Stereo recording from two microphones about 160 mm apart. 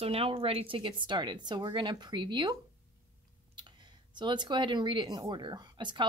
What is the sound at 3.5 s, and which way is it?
Speech, 30° right (ahead or behind).